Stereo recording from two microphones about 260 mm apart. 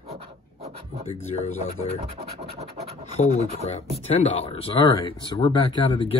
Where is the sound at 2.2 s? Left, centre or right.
Right.